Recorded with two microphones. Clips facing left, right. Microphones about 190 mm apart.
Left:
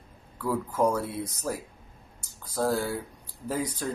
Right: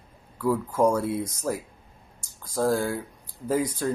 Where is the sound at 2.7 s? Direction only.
50° right (ahead or behind).